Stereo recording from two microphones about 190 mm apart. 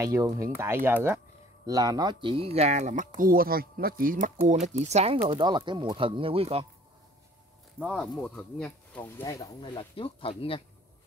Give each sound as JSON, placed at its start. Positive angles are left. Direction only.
{"t": 0.0, "sound": "speech", "side_deg": -15}
{"t": 3.2, "sound": "speech", "side_deg": -50}
{"t": 5.3, "sound": "speech", "side_deg": -25}
{"t": 7.8, "sound": "speech", "side_deg": 0}